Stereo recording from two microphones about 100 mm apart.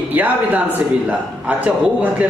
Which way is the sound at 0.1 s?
15° right (ahead or behind).